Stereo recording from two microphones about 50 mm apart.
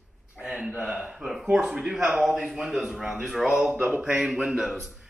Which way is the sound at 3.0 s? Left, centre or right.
Right.